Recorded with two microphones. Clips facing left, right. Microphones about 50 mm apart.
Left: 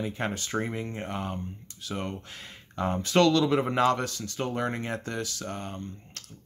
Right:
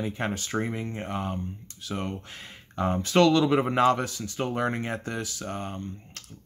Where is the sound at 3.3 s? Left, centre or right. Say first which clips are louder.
Right 2 dB; centre.